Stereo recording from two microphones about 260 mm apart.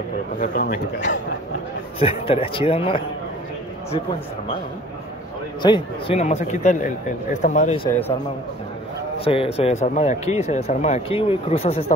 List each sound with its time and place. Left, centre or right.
0.4 s a man's voice: left
2.0 s speech: left
5.6 s speech: centre
9.2 s speech: left